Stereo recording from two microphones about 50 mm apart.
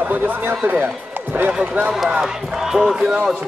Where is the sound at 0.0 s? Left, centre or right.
Right.